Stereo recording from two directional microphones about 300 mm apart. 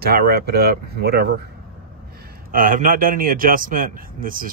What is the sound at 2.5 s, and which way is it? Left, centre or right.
Speech, right.